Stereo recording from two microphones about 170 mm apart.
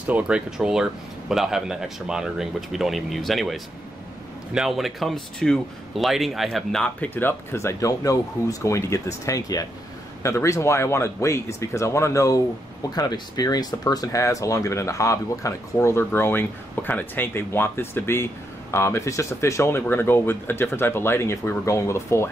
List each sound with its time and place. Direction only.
0.0 s speech: 5° right (ahead or behind); by 22.3 s 15° left (ahead or behind)